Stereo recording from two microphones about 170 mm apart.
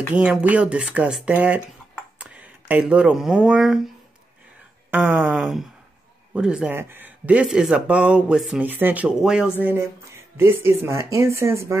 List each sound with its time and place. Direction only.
0.1 s speech: 5° right (ahead or behind)
4.9 s speech: 5° right (ahead or behind)